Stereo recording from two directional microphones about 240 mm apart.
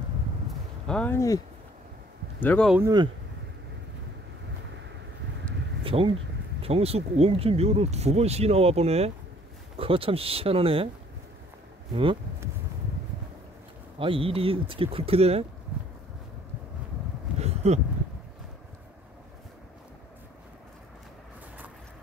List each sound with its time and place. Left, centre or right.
0.8 s speech: centre
2.4 s speech: centre
2.8 s speech: centre
5.9 s speech: right
11.9 s speech: right
13.9 s speech: right
15.7 s a sound: centre
17.4 s a sound: right